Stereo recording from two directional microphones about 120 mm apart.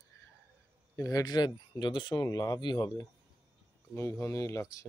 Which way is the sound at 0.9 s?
25° left (ahead or behind).